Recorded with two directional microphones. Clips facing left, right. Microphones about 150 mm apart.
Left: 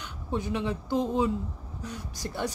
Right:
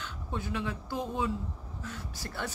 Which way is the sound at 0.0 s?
20° left (ahead or behind).